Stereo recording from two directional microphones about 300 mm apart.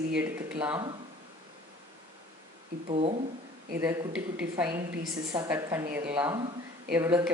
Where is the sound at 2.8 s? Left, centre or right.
Right.